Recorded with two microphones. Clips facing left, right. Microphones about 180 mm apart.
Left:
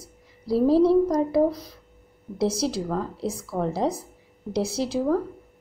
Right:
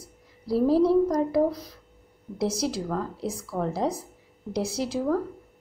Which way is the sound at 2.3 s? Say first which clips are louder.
Left 3 dB; 25° left (ahead or behind).